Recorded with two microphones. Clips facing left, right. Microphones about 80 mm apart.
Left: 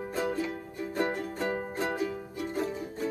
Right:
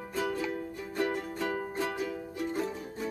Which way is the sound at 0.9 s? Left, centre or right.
Left.